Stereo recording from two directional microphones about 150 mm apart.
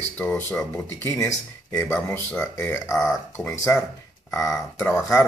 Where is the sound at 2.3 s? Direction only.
15° left (ahead or behind).